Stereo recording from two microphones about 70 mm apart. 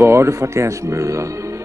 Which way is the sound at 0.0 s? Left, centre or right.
Right.